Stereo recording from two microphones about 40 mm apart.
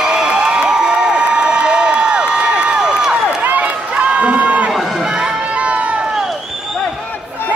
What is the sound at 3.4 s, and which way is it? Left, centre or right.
Run, right.